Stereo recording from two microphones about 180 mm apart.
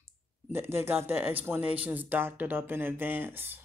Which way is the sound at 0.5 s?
15° right (ahead or behind).